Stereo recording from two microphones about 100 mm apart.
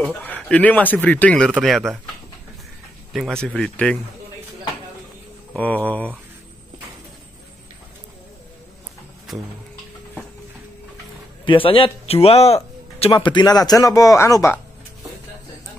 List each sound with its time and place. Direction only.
0.2 s speech: 15° left (ahead or behind)
1.6 s speech: centre (ahead or behind)
3.1 s speech: centre (ahead or behind)
3.4 s speech: 10° left (ahead or behind)
5.5 s speech: 15° left (ahead or behind)
11.4 s speech: 60° left (ahead or behind); by 13.1 s 85° left
13.1 s speech: 45° left (ahead or behind); by 14.6 s 25° left (ahead or behind)